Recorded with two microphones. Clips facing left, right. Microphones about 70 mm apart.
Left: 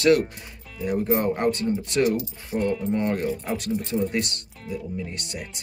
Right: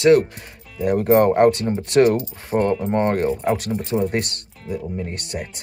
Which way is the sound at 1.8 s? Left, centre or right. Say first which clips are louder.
Right 7 dB; right.